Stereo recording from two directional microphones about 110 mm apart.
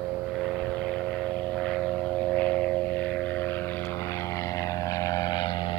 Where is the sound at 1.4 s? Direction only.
5° left (ahead or behind).